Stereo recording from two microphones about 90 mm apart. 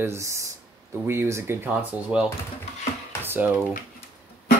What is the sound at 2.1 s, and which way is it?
Speech, 15° right (ahead or behind).